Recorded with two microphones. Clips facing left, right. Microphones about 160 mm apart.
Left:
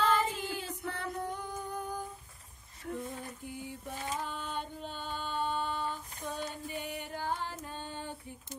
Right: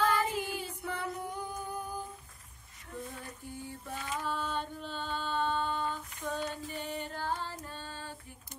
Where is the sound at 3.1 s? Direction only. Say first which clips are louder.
Left 2 dB; 20° left (ahead or behind).